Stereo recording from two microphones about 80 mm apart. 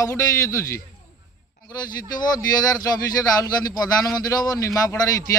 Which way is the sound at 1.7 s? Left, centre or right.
Left.